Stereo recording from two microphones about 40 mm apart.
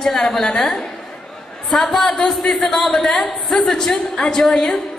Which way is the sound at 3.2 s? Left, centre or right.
Left.